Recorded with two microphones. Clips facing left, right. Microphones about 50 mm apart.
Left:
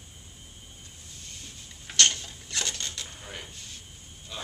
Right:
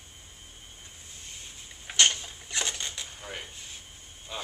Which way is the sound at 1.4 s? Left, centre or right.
Centre.